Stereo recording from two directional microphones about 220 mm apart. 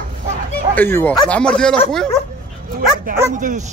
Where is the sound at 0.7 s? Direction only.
10° left (ahead or behind).